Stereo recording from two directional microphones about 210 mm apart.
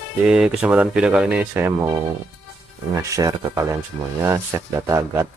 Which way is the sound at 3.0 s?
15° right (ahead or behind).